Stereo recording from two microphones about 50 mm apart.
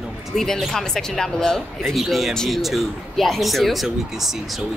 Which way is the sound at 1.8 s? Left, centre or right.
Centre.